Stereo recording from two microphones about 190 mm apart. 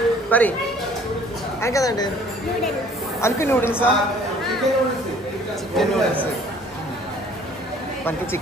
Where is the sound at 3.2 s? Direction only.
15° left (ahead or behind).